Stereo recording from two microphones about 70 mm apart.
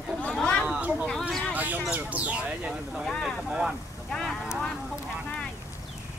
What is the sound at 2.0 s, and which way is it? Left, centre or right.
Speech, centre.